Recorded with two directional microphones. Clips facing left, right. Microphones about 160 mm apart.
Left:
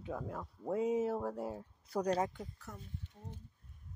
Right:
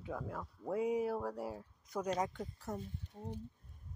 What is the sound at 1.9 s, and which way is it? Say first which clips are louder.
Speech: left 3 dB; 35° left (ahead or behind).